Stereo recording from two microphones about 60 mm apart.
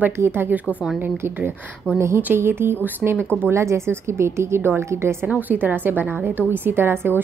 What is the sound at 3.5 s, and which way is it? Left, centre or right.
A woman's voice, right.